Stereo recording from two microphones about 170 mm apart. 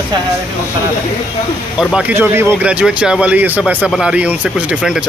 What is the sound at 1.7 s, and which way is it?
Speech, 5° right (ahead or behind).